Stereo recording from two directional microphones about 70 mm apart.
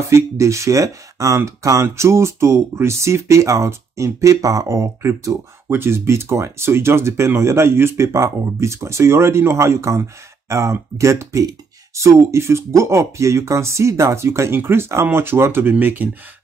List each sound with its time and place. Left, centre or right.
0.1 s speech: right
5.7 s speech: right